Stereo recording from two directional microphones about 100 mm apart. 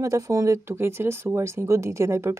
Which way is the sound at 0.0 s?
35° right (ahead or behind).